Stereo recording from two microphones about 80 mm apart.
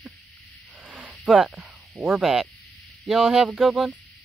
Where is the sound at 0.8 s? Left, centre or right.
Centre.